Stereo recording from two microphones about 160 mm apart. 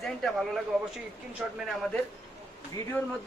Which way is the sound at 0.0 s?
Centre (ahead or behind).